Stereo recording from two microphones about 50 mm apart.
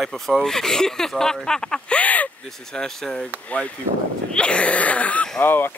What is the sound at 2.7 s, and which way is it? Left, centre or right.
Speech, centre.